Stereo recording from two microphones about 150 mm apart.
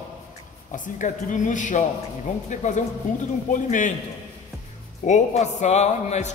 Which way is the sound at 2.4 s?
55° left (ahead or behind).